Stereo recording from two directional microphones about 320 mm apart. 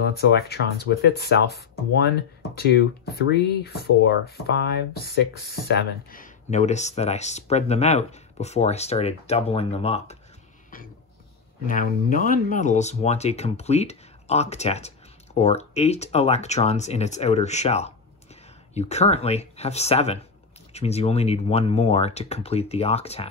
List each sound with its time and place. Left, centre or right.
0.0 s speech: left
3.1 s speech: left
11.6 s speech: left